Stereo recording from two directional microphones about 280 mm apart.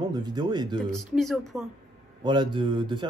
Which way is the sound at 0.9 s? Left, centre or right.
Centre.